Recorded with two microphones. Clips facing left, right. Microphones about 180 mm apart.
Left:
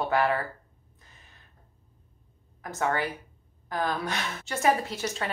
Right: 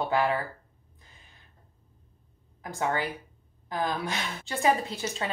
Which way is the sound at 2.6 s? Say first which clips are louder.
Left 1 dB; 15° right (ahead or behind).